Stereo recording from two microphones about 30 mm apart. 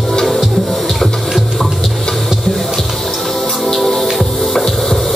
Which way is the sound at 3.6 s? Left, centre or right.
Centre.